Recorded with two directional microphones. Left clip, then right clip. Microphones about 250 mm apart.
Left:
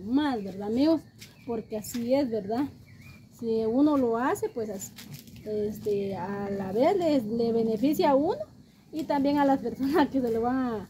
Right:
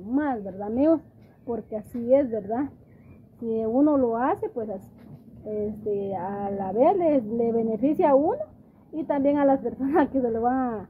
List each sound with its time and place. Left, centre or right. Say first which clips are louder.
0.1 s speech: right 1 dB; centre
6.0 s speech: right 4 dB; centre